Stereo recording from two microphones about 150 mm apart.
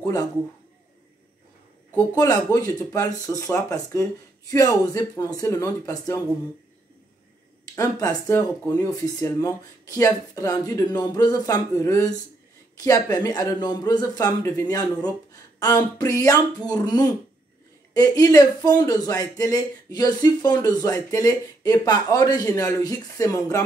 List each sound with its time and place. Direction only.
0.0 s a man's voice: 25° left (ahead or behind)
2.1 s speech: 25° left (ahead or behind)
7.7 s speech: 25° left (ahead or behind)
15.6 s speech: 25° left (ahead or behind)